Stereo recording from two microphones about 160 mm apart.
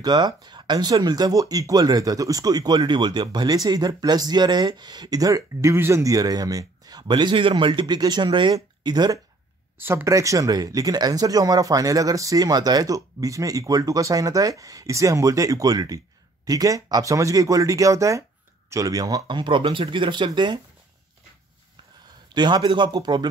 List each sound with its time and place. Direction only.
0.0 s speech: 25° right (ahead or behind)
9.8 s speech: 15° right (ahead or behind); by 20.6 s 30° right (ahead or behind)
22.3 s speech: 30° right (ahead or behind)